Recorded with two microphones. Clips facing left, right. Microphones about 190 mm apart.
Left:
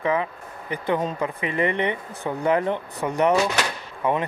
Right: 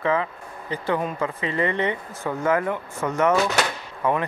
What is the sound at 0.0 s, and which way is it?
Speech, 15° left (ahead or behind).